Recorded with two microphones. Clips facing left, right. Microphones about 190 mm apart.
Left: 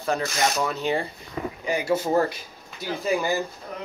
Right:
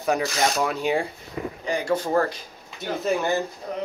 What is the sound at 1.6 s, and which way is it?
Speech, 10° left (ahead or behind).